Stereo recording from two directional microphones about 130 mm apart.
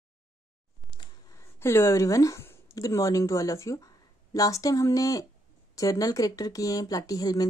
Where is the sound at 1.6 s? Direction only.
20° left (ahead or behind).